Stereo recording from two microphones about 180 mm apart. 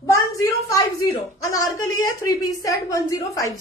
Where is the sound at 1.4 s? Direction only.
20° left (ahead or behind).